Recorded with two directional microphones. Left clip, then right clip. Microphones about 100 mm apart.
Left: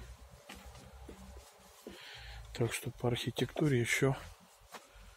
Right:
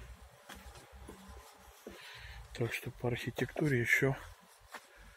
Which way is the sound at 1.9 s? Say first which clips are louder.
Left 1 dB; 45° left (ahead or behind).